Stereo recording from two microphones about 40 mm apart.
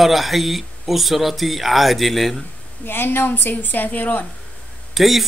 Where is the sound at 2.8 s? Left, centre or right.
Left.